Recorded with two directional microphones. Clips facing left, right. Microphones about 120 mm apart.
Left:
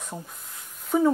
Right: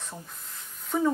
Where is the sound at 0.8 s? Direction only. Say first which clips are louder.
Left 4 dB; 10° left (ahead or behind).